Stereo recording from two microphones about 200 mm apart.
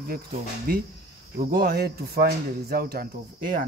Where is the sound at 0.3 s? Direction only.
45° right (ahead or behind).